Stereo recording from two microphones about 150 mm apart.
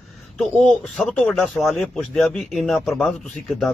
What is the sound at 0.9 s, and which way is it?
Speech, 5° left (ahead or behind).